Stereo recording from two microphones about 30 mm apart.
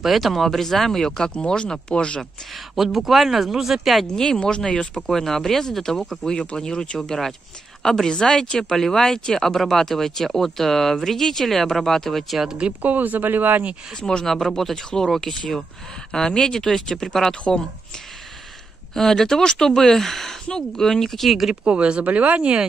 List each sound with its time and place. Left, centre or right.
0.0 s speech: centre
1.3 s speech: left
2.5 s speech: centre
4.1 s speech: left
4.9 s speech: centre
7.0 s speech: centre
12.8 s speech: right
13.9 s speech: left
14.2 s speech: centre
15.1 s speech: left
18.9 s speech: centre
21.6 s speech: right
22.0 s speech: right